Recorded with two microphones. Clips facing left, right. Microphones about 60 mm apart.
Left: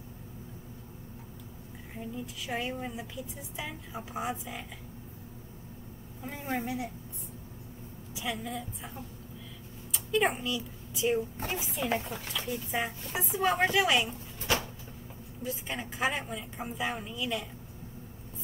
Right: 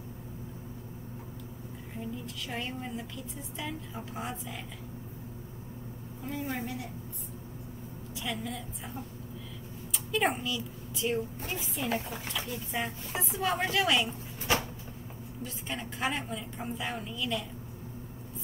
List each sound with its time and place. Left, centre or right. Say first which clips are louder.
2.0 s a woman's voice: even; centre
6.3 s a woman's voice: left 2 dB; left
8.2 s a woman's voice: left 1 dB; centre
9.9 s speech: left 1 dB; centre
11.3 s speech: left 2 dB; left
11.6 s a woman's voice: even; centre
15.4 s a woman's voice: left 2 dB; centre